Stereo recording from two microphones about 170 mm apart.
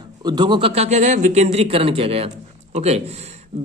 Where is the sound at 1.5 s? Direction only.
35° right (ahead or behind).